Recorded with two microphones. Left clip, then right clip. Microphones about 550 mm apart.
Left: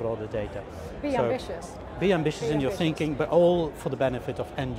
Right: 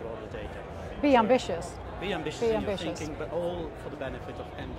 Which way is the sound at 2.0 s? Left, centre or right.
Left.